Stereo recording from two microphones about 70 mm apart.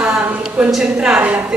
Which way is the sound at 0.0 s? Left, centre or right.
Centre.